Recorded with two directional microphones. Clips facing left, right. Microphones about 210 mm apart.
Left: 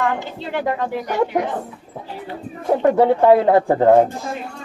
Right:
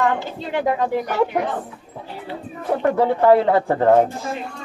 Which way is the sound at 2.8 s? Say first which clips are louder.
Left 3 dB; 15° left (ahead or behind).